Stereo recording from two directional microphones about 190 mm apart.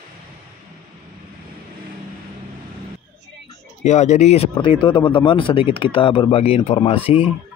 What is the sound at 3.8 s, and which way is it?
Speech, 35° left (ahead or behind).